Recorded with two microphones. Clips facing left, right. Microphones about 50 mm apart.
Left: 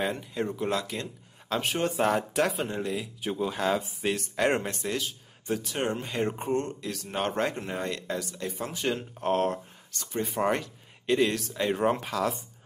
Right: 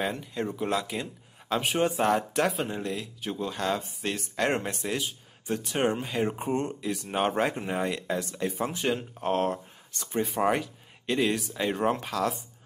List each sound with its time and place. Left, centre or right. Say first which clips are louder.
0.0 s speech: left 1 dB; centre
6.5 s speech: even; centre
8.4 s speech: right 4 dB; right
8.8 s speech: left 2 dB; centre